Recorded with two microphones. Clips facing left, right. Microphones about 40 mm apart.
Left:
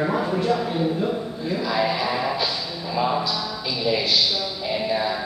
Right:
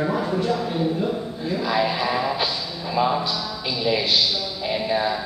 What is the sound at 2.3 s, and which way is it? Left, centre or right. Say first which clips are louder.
Music: even; centre.